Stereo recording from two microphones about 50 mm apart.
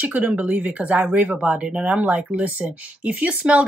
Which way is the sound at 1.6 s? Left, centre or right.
Centre.